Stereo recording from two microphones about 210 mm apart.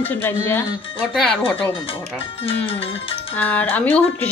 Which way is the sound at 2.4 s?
25° left (ahead or behind).